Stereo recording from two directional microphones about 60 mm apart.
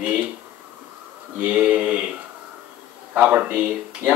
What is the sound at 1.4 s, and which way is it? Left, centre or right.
Speech, right.